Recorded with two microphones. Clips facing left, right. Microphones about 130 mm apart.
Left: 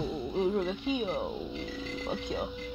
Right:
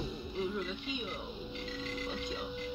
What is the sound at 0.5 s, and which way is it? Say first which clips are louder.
Speech: left 8 dB; 55° left (ahead or behind).